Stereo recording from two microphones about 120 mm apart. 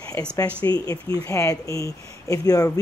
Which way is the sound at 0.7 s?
30° left (ahead or behind).